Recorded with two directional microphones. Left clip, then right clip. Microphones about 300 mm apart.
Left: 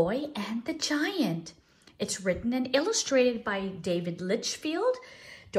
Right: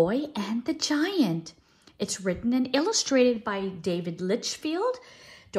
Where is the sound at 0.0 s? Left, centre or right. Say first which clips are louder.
Right 3 dB; centre.